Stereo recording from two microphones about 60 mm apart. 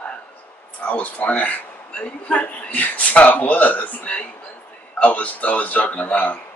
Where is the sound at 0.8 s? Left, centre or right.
Left.